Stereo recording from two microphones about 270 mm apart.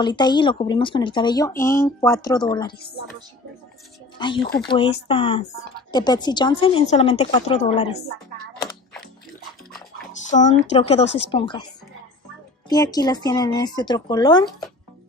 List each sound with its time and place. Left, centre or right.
0.0 s speech: centre
4.2 s speech: centre
10.2 s speech: left
12.6 s speech: centre